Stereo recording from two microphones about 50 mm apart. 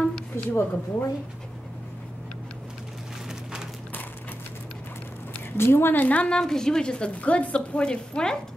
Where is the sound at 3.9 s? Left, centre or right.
Left.